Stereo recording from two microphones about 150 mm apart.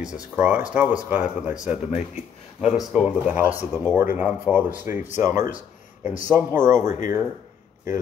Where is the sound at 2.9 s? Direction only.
5° right (ahead or behind).